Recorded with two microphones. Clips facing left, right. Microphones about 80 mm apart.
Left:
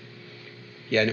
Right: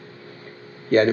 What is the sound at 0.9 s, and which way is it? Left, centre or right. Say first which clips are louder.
Speech: right 7 dB; right.